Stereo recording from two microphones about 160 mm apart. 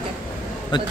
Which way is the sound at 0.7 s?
30° left (ahead or behind).